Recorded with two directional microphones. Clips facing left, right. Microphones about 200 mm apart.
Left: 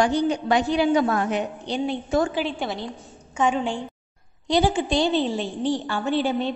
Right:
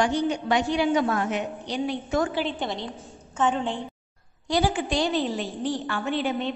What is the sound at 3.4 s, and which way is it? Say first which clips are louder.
Speech: left 2 dB; 10° left (ahead or behind).